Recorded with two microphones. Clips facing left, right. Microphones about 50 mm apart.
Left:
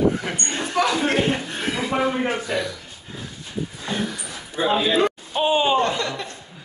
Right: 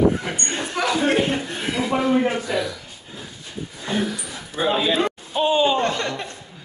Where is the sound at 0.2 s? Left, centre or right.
Centre.